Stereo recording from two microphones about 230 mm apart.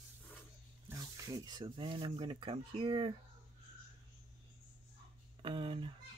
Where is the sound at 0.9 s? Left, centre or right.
Centre.